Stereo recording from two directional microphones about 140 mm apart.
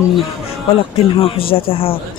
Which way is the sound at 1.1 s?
40° left (ahead or behind).